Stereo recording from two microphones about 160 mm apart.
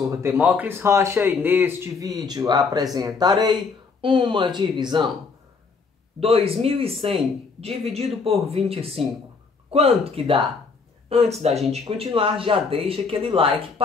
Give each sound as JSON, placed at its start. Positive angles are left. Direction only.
{"t": 0.0, "sound": "speech", "side_deg": -20}
{"t": 6.1, "sound": "speech", "side_deg": -35}